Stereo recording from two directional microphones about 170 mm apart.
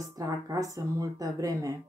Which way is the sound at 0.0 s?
20° right (ahead or behind).